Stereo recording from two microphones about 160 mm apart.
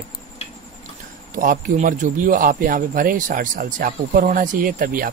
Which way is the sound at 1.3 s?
60° right (ahead or behind).